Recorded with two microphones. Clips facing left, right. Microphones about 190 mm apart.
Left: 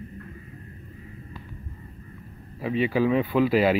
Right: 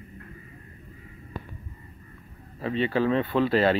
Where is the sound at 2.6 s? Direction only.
10° left (ahead or behind).